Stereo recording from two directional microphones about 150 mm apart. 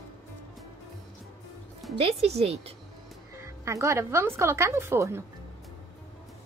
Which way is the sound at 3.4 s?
20° right (ahead or behind).